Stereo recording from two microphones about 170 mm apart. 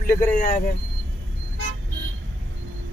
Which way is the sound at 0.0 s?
55° left (ahead or behind).